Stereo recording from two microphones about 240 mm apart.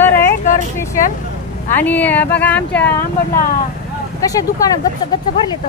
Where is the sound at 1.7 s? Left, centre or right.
Centre.